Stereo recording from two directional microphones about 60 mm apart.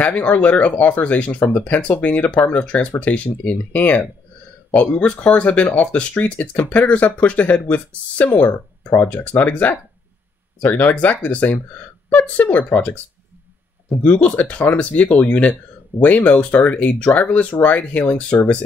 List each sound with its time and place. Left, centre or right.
0.0 s speech: left
14.0 s speech: left